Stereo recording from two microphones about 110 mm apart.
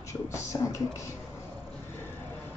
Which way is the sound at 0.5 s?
35° left (ahead or behind).